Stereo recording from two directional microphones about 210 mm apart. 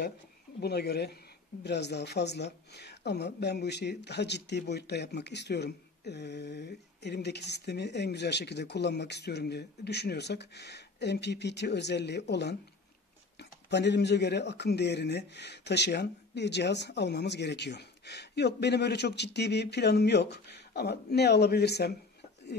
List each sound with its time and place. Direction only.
0.6 s speech: 50° left (ahead or behind)